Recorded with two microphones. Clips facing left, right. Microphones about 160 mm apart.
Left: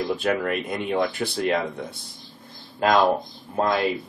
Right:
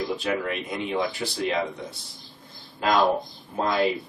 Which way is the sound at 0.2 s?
55° left (ahead or behind).